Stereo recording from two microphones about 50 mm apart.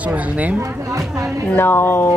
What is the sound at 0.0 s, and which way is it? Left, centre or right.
Speech, right.